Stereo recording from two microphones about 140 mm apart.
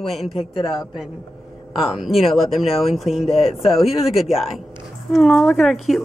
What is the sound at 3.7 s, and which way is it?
Speech, 40° left (ahead or behind).